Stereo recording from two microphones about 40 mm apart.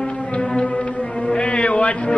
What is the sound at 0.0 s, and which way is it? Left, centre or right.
Music, left.